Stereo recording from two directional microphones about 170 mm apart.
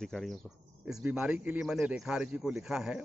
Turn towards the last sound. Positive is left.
turn(degrees=-5)  # may be behind; listen again after turning